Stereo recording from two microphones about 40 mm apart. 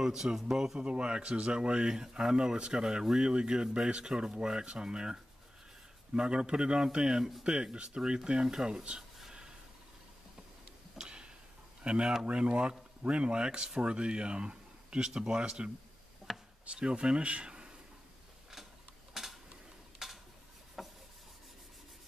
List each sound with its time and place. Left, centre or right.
0.0 s speech: centre
0.7 s speech: right
11.0 s tick-tock: right
11.8 s speech: right
16.3 s chop: centre
16.6 s speech: right
19.2 s mechanisms: centre
20.0 s cutlery: centre
20.8 s rub: centre